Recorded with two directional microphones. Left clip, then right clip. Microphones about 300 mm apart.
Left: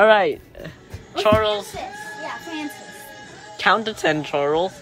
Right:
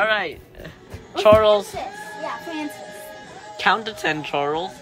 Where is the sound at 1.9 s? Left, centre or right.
Right.